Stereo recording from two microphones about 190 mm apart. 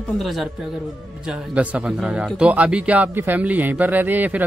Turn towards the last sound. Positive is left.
turn(degrees=-10)  # may be behind; listen again after turning